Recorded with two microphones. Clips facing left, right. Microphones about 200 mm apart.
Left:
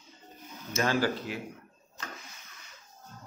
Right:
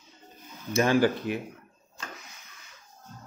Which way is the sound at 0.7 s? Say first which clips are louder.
Right 5 dB; 15° right (ahead or behind).